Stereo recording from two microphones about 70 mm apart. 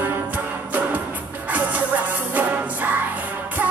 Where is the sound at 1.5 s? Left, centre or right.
Right.